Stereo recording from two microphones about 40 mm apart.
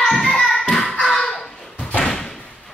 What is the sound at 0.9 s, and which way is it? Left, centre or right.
Slam, centre.